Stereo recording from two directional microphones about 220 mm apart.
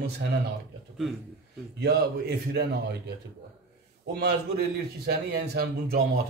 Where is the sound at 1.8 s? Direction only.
50° right (ahead or behind).